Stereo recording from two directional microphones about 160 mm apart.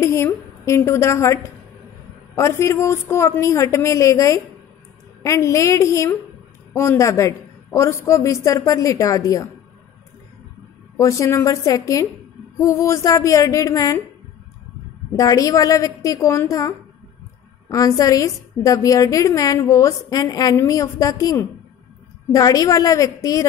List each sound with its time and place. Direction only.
0.0 s a woman's voice: 15° left (ahead or behind)
11.0 s a woman's voice: 20° left (ahead or behind)
15.1 s a woman's voice: 20° left (ahead or behind)